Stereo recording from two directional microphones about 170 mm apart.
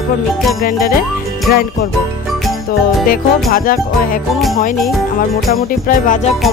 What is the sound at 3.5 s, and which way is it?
Speech, 55° left (ahead or behind).